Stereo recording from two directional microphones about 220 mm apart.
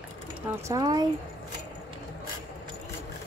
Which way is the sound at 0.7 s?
15° right (ahead or behind).